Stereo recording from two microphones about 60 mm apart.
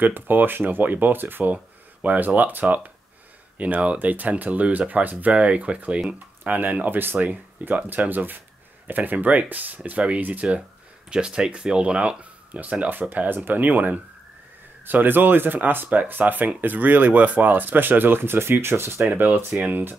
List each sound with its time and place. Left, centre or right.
0.0 s speech: right